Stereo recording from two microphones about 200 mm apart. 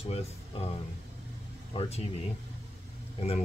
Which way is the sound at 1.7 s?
30° left (ahead or behind).